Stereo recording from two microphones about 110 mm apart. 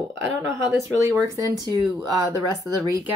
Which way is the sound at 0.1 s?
20° right (ahead or behind).